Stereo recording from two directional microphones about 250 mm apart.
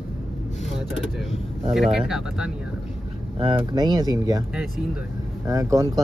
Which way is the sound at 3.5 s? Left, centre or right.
Centre.